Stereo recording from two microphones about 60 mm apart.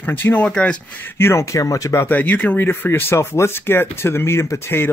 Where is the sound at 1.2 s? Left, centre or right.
Left.